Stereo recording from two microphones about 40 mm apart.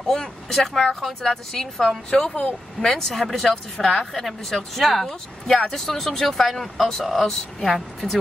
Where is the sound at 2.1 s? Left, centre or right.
Left.